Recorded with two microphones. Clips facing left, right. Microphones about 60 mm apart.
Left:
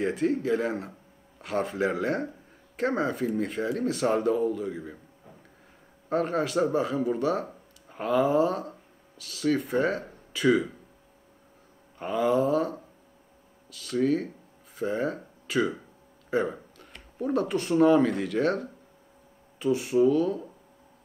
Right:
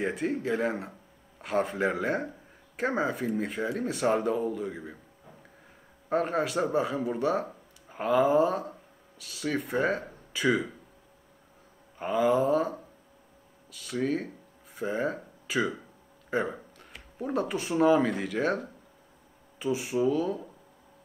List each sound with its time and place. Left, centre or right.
0.0 s speech: centre
6.0 s speech: centre
12.0 s speech: centre